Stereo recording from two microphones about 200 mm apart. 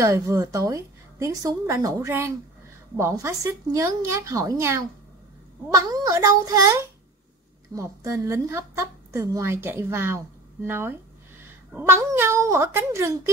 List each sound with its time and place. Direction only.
0.0 s a woman's voice: 15° right (ahead or behind)